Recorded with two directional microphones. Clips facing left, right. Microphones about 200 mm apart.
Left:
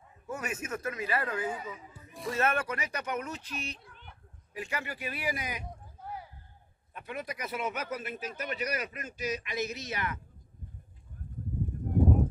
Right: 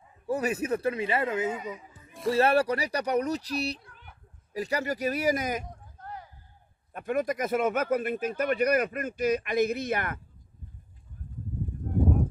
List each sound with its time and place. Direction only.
0.3 s speech: 35° right (ahead or behind)
2.3 s speech: 35° right (ahead or behind)
3.8 s a sound: centre (ahead or behind)
4.6 s speech: 40° right (ahead or behind)
5.9 s a sound: 10° left (ahead or behind)
6.9 s a man's voice: 50° right (ahead or behind)